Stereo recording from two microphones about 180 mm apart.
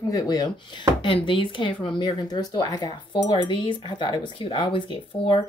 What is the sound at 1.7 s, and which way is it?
Speech, 5° left (ahead or behind).